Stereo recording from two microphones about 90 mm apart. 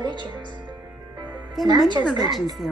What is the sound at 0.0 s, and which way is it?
Music, 60° right (ahead or behind).